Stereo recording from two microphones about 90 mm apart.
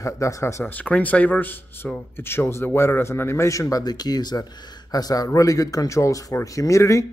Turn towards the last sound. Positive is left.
turn(degrees=35)  # may be behind; listen again after turning